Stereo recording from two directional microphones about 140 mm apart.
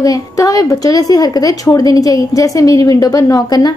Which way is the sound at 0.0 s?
25° left (ahead or behind).